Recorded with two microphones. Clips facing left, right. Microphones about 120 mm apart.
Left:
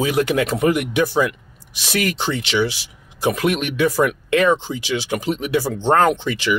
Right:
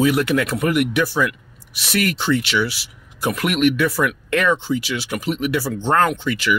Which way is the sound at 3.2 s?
20° left (ahead or behind).